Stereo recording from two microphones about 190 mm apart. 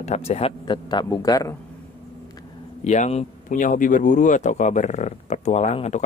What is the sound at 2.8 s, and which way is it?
Speech, 35° left (ahead or behind).